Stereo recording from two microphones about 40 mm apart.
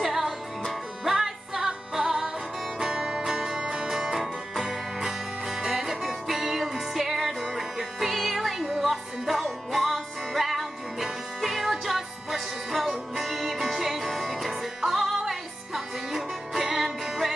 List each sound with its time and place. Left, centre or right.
0.0 s music: centre
9.8 s music: centre
10.4 s music: centre